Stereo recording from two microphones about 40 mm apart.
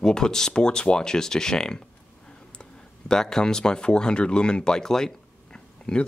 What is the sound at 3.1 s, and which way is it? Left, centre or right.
Speech, centre.